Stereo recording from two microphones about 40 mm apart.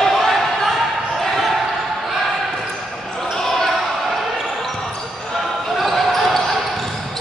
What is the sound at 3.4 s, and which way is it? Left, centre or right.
Basketball bounce, centre.